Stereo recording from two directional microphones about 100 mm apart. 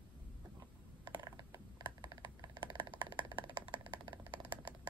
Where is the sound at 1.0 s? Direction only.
45° right (ahead or behind).